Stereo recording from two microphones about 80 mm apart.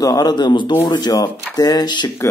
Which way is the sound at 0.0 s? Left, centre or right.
Left.